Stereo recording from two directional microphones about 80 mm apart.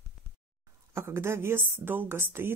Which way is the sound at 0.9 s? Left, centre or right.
Right.